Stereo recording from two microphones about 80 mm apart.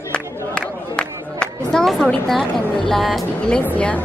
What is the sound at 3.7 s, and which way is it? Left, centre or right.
Speech, centre.